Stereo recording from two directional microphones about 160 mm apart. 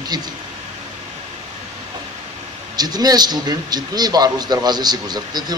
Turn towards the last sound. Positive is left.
turn(degrees=-25)  # may be behind; listen again after turning